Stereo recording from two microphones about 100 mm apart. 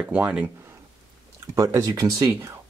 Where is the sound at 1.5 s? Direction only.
30° right (ahead or behind).